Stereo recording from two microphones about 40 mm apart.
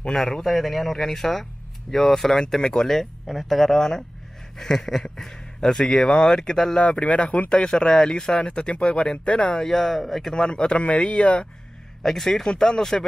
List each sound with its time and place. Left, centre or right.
0.1 s speech: centre
2.3 s speech: centre
2.9 s speech: centre
6.8 s speech: left
8.4 s speech: left; by 10.5 s centre
10.5 s speech: left
12.0 s speech: centre